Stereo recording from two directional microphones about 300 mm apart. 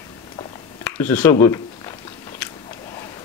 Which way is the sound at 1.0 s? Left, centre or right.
Centre.